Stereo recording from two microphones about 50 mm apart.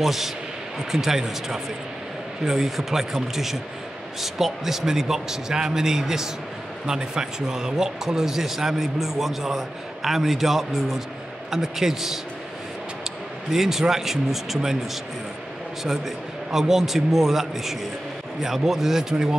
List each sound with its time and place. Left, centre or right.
0.0 s a man's voice: centre
13.5 s a man's voice: centre
16.5 s a man's voice: centre